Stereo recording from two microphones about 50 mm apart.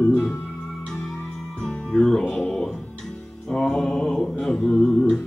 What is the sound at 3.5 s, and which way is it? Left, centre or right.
Mantra, left.